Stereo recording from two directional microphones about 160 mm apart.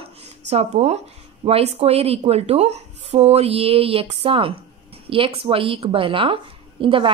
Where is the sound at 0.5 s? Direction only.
40° right (ahead or behind).